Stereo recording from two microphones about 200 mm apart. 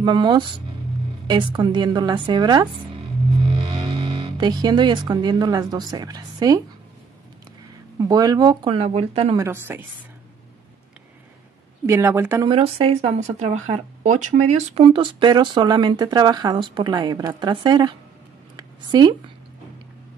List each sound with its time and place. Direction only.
0.0 s speech: 20° right (ahead or behind)
8.0 s speech: 20° right (ahead or behind)
9.4 s a woman's voice: 10° right (ahead or behind)
11.8 s a woman's voice: 15° right (ahead or behind)
12.4 s speech: 30° right (ahead or behind)
18.6 s a sound: 20° right (ahead or behind)